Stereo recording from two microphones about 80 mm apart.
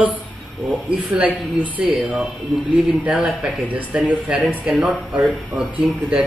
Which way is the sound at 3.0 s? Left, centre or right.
Centre.